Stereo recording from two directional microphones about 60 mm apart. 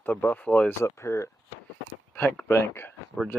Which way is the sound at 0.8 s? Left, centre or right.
Left.